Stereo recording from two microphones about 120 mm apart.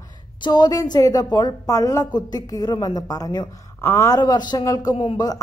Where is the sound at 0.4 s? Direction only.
35° left (ahead or behind).